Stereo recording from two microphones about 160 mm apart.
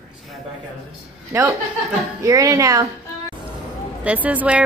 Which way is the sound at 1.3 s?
20° right (ahead or behind).